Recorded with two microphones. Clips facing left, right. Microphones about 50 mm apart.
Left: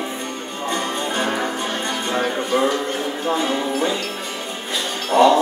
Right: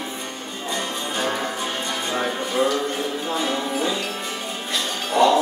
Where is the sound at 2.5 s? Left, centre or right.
Left.